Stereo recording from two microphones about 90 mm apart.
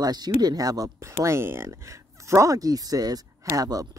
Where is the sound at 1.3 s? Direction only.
30° right (ahead or behind); by 3.8 s 45° right (ahead or behind).